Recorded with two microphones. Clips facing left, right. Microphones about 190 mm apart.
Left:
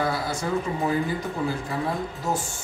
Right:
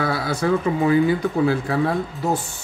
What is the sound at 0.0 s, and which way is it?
Speech, 70° right (ahead or behind).